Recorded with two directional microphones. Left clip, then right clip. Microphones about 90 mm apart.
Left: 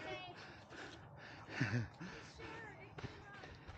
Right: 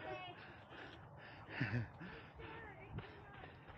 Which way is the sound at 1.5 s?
45° left (ahead or behind).